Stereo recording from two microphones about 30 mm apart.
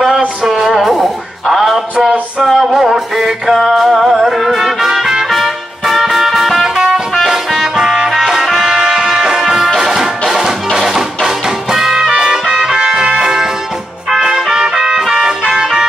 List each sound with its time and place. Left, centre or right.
0.5 s music: centre
2.7 s mantra: centre
3.6 s music: centre
7.2 s music: centre
8.6 s brass instrument: right
9.4 s music: centre
13.2 s music: centre
14.2 s trumpet: right
15.1 s music: right